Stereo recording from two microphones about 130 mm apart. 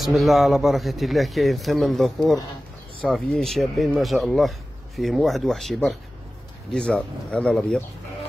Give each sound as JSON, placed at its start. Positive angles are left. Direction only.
{"t": 0.0, "sound": "speech", "side_deg": 0}